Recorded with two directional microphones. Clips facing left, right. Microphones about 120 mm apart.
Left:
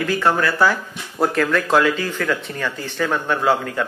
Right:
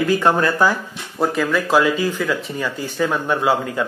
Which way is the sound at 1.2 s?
Centre (ahead or behind).